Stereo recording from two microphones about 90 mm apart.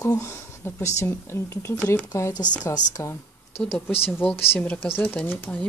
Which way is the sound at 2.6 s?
45° left (ahead or behind).